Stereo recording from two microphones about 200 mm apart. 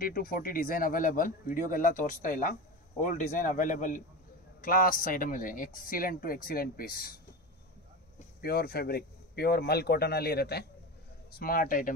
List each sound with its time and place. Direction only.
0.0 s speech: 45° left (ahead or behind)
8.4 s speech: 50° left (ahead or behind)